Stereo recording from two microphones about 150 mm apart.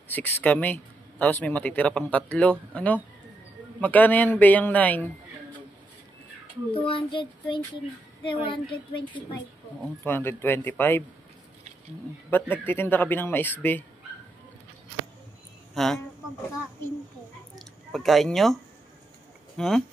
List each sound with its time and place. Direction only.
0.1 s speech: 10° left (ahead or behind)
6.7 s child singing: 35° left (ahead or behind)
10.0 s speech: 15° left (ahead or behind)
12.3 s speech: 15° left (ahead or behind)
15.7 s speech: centre (ahead or behind)
17.6 s speech: centre (ahead or behind)